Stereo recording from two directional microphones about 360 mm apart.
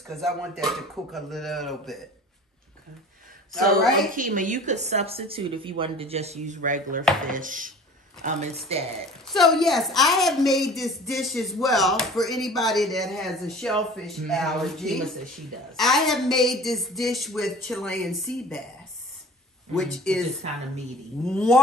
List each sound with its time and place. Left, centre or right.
0.0 s a woman's voice: centre
4.1 s speech: right
9.3 s a woman's voice: centre
19.7 s a woman's voice: centre
21.3 s a woman's voice: centre